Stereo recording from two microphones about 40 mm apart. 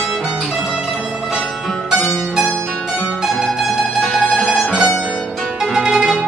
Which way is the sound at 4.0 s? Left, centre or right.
Centre.